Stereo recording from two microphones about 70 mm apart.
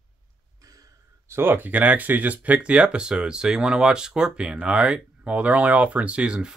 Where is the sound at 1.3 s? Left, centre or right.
Right.